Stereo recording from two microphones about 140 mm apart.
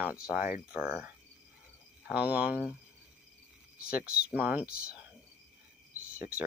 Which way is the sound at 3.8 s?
90° left.